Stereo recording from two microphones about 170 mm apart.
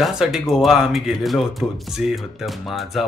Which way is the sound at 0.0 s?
Centre (ahead or behind).